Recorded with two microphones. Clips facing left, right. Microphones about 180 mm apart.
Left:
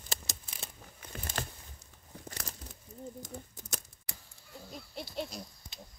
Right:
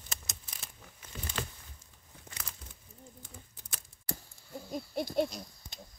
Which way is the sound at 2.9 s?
70° left (ahead or behind).